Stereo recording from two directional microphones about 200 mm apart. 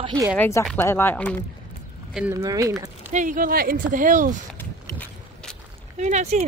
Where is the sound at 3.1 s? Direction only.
40° right (ahead or behind).